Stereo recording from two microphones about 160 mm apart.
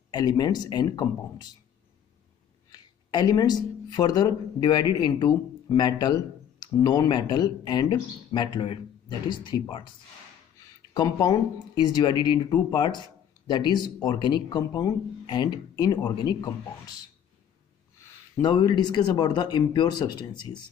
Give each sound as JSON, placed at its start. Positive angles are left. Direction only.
{"t": 0.1, "sound": "speech", "side_deg": 25}
{"t": 2.7, "sound": "speech", "side_deg": 25}
{"t": 10.9, "sound": "speech", "side_deg": 25}
{"t": 18.4, "sound": "speech", "side_deg": 25}